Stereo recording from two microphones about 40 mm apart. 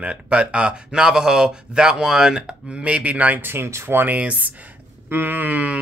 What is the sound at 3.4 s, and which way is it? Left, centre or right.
Speech, right.